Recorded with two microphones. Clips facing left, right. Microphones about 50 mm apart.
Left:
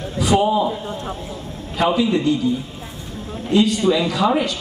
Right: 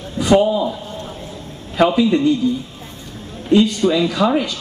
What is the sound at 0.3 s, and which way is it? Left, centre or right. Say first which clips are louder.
Speech: right 3 dB; centre.